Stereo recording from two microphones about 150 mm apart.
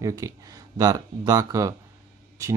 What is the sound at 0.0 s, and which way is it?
Speech, 25° right (ahead or behind).